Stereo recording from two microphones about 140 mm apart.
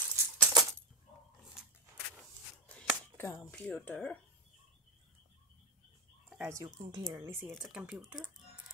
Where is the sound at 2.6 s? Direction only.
10° left (ahead or behind).